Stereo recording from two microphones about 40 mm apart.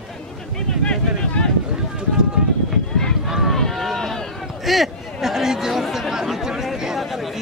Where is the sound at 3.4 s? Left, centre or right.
Centre.